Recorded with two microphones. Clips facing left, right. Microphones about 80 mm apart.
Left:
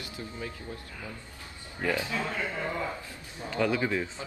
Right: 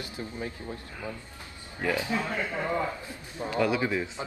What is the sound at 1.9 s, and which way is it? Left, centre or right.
A man's voice, right.